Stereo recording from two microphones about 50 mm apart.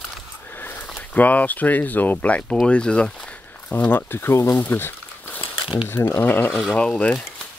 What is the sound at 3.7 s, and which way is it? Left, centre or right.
Speech, left.